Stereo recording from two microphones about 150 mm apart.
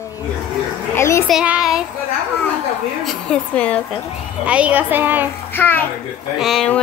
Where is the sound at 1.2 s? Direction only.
5° right (ahead or behind).